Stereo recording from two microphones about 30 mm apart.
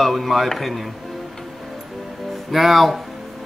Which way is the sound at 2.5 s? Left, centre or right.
Centre.